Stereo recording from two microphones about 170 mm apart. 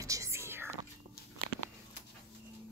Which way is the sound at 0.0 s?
20° right (ahead or behind).